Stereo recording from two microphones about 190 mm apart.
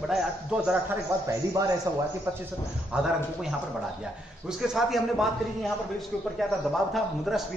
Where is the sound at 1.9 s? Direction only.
15° right (ahead or behind).